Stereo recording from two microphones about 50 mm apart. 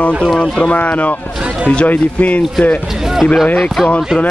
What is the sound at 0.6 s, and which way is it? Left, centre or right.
Speech, left.